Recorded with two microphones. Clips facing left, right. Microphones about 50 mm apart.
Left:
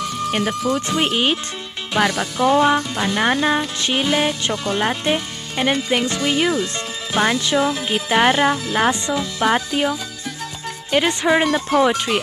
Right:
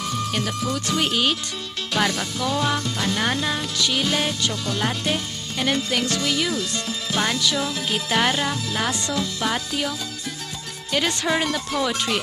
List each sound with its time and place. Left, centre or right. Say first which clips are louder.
0.3 s speech: left 9 dB; left
2.0 s music: left 4 dB; centre
2.3 s speech: left 8 dB; left